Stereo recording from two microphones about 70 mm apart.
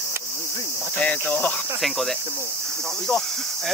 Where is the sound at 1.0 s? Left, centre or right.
Left.